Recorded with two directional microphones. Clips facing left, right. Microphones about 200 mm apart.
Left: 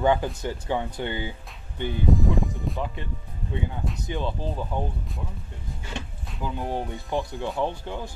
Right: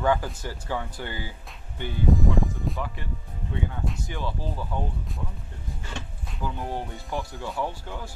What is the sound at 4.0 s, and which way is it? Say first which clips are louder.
Speech: left 3 dB; 20° left (ahead or behind).